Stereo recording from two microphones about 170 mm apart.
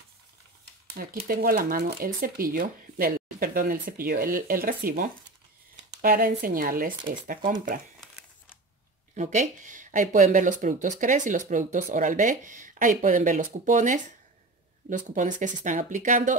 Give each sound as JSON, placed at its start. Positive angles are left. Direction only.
{"t": 1.2, "sound": "speech", "side_deg": -60}
{"t": 9.1, "sound": "speech", "side_deg": -45}